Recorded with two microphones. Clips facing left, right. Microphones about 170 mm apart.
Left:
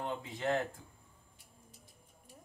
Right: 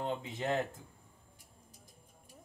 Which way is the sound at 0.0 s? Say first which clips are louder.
Right 1 dB; 20° right (ahead or behind).